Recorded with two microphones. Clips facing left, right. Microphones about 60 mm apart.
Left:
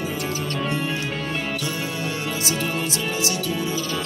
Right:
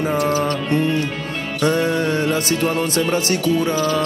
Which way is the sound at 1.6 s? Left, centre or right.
Right.